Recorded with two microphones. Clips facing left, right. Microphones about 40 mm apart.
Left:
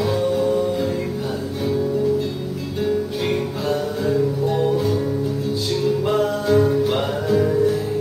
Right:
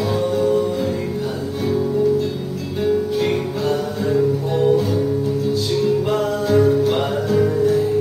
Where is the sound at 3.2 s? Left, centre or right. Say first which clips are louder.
Right 2 dB; centre.